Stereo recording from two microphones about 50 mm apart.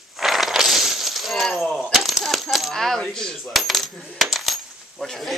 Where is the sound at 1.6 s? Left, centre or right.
Centre.